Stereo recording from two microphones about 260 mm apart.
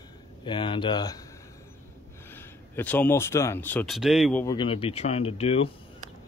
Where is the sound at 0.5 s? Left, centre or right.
Centre.